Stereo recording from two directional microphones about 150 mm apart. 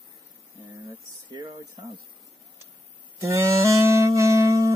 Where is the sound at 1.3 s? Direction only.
30° right (ahead or behind).